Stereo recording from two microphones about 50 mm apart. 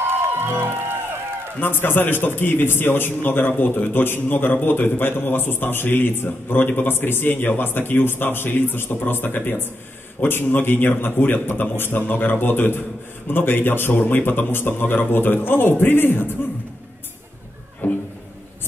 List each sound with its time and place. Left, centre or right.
0.0 s music: right
1.6 s a man's voice: left
4.7 s a man's voice: left
17.8 s music: left